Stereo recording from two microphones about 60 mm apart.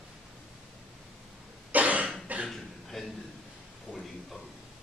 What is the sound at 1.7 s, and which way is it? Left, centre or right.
Cough, right.